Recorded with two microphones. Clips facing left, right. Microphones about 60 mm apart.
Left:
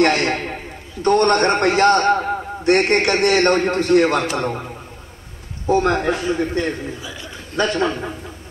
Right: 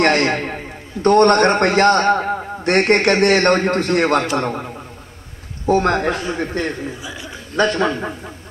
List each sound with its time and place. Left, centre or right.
0.0 s a man's voice: right
5.7 s a man's voice: right
7.0 s a man's voice: centre
7.7 s a man's voice: right